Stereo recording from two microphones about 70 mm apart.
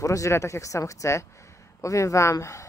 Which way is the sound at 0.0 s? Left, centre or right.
Left.